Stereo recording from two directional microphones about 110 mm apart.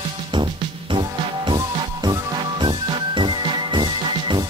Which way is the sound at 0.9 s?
50° right (ahead or behind).